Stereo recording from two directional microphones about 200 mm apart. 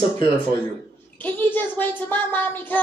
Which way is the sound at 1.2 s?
10° left (ahead or behind).